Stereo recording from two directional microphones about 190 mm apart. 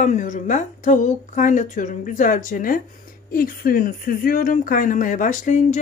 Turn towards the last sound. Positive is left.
turn(degrees=40)  # may be behind; listen again after turning